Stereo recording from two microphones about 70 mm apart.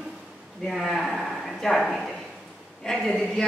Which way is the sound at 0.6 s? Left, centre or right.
Centre.